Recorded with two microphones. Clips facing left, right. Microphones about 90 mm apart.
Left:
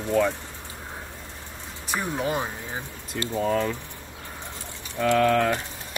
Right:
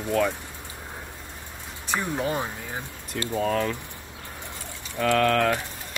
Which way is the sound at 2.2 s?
20° left (ahead or behind).